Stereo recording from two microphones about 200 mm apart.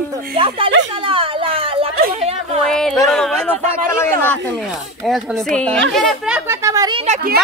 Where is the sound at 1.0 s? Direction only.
25° right (ahead or behind).